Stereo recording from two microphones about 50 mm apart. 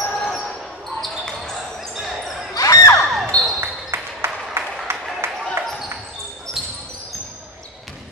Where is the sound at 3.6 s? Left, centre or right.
Right.